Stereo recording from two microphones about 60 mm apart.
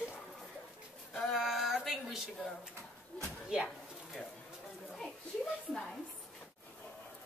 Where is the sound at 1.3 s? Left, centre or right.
Centre.